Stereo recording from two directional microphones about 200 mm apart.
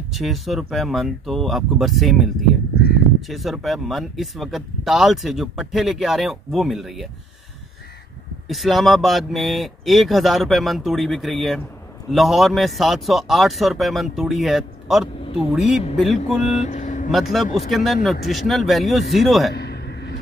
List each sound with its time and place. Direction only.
0.1 s speech: centre (ahead or behind)
8.5 s speech: centre (ahead or behind)
16.5 s speech: 35° left (ahead or behind)
17.1 s speech: centre (ahead or behind)
19.5 s a sound: 55° left (ahead or behind)